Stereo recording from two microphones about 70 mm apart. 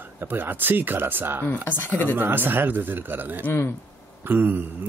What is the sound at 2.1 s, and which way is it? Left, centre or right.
Speech, right.